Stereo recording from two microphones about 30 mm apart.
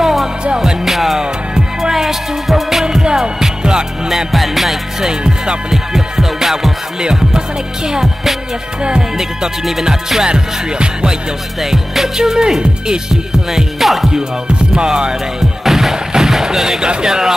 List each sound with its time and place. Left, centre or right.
0.0 s music: centre
2.8 s music: right
4.3 s music: centre
5.0 s music: right
5.7 s music: centre
7.0 s music: right
10.2 s music: right
11.6 s music: centre
12.2 s music: centre
13.5 s music: centre
14.7 s music: right
15.6 s music: centre
16.1 s a sound: centre
17.0 s music: centre